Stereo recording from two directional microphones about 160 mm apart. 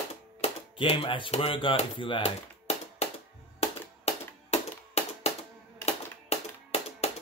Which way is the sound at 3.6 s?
40° left (ahead or behind).